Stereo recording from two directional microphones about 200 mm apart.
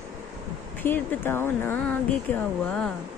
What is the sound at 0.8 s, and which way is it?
Speech, 10° left (ahead or behind).